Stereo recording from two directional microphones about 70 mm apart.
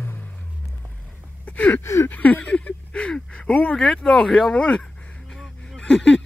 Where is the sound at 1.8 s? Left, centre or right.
Left.